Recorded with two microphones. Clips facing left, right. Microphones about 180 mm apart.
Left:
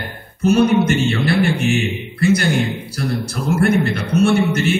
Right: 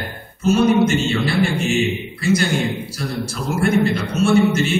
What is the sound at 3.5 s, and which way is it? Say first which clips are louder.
Music: left 1 dB; 60° left (ahead or behind).